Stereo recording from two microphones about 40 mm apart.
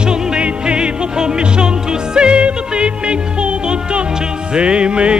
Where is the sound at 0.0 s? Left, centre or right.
Centre.